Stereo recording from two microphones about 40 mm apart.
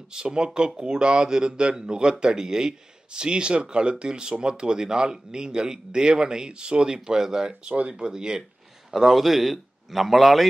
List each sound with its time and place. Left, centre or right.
0.1 s speech: right
8.9 s speech: centre